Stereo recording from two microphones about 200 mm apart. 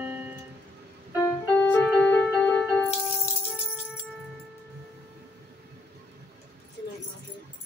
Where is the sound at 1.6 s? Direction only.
5° left (ahead or behind).